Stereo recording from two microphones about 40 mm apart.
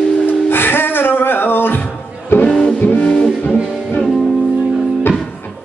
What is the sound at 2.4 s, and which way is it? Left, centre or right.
Music, centre.